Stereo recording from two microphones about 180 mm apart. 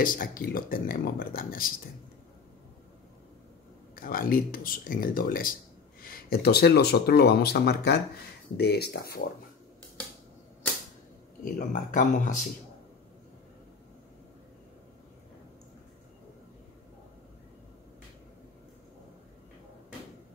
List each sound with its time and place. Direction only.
0.0 s speech: 50° left (ahead or behind)
3.9 s speech: 50° left (ahead or behind)
11.4 s speech: 45° left (ahead or behind)